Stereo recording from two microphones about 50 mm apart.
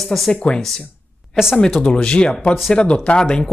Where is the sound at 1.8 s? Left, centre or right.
Centre.